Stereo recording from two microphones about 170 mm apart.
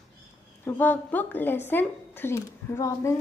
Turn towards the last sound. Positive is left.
turn(degrees=15)  # may be behind; listen again after turning